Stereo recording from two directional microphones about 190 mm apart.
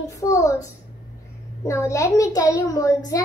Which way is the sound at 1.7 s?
15° left (ahead or behind).